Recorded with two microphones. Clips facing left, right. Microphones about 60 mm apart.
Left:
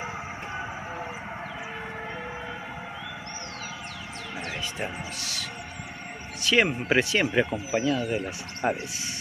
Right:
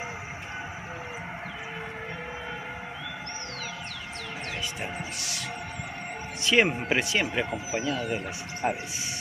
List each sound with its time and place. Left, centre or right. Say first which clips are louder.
4.8 s speech: left 1 dB; centre
6.5 s speech: left 1 dB; centre
7.4 s speech: left 5 dB; centre
7.7 s speech: left 4 dB; centre